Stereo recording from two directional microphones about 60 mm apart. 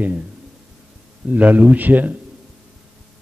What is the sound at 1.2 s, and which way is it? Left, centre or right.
Speech, right.